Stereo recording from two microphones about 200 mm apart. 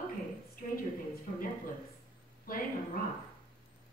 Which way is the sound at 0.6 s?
45° left (ahead or behind).